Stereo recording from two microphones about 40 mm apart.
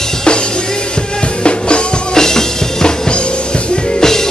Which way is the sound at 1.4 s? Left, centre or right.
Left.